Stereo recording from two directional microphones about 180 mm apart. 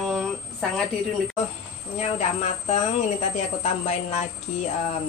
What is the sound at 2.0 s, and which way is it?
Speech, 35° left (ahead or behind).